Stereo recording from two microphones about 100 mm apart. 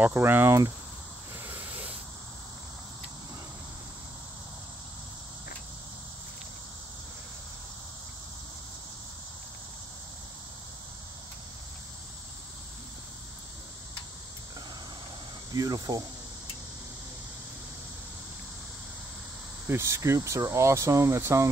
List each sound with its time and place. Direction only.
0.0 s speech: 20° right (ahead or behind)
1.4 s a sound: 20° right (ahead or behind)
15.5 s cricket: 40° right (ahead or behind)
19.7 s speech: 25° right (ahead or behind)